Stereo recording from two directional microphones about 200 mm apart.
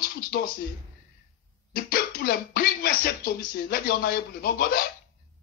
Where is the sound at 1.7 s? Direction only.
50° left (ahead or behind).